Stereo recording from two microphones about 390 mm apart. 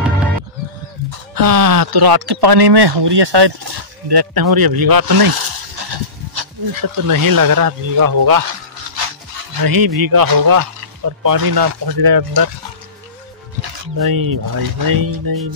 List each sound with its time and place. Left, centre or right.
1.3 s speech: right
4.1 s speech: right
9.6 s speech: right
13.9 s speech: right